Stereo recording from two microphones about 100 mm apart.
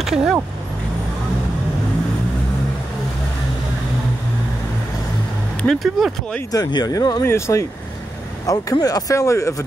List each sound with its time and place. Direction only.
0.0 s speech: 5° right (ahead or behind)
5.6 s speech: 5° left (ahead or behind)
6.5 s speech: 40° left (ahead or behind)
8.7 s speech: 40° left (ahead or behind)